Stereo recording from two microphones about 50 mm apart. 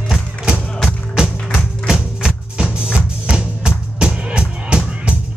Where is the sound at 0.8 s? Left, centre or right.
Centre.